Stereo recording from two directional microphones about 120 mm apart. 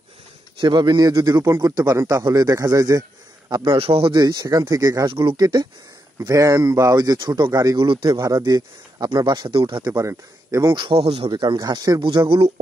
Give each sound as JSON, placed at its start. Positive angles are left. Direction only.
{"t": 0.6, "sound": "a man's voice", "side_deg": -40}
{"t": 3.7, "sound": "speech", "side_deg": -50}
{"t": 4.1, "sound": "a man's voice", "side_deg": -35}
{"t": 5.1, "sound": "speech", "side_deg": -50}
{"t": 5.4, "sound": "a man's voice", "side_deg": -35}
{"t": 6.1, "sound": "a man's voice", "side_deg": -25}
{"t": 7.7, "sound": "a man's voice", "side_deg": -45}
{"t": 9.9, "sound": "speech", "side_deg": -25}
{"t": 10.8, "sound": "a man's voice", "side_deg": -50}
{"t": 12.0, "sound": "speech", "side_deg": -45}